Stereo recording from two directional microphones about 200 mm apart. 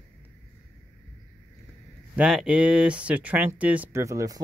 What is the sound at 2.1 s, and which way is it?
Speech, 5° right (ahead or behind).